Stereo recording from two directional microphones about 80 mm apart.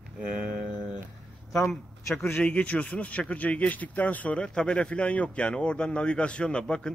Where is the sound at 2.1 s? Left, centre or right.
Left.